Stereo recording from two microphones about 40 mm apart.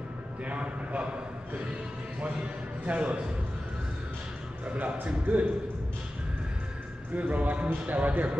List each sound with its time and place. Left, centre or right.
0.5 s a sound: right
2.8 s speech: right
4.6 s speech: right
7.2 s speech: right